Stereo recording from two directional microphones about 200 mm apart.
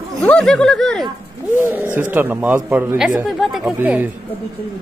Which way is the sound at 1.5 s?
10° right (ahead or behind).